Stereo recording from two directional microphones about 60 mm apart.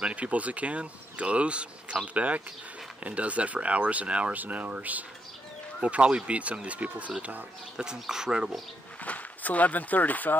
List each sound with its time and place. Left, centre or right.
0.0 s speech: right
7.7 s speech: centre
9.0 s speech: left